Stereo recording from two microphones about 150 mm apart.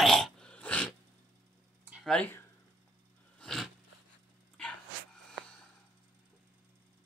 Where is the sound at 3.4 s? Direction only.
Centre (ahead or behind).